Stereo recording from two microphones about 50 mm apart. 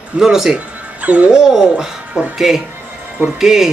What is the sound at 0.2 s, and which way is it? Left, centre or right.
A man's voice, centre.